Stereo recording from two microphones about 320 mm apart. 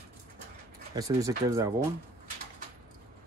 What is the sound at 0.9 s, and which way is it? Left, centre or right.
Speech, centre.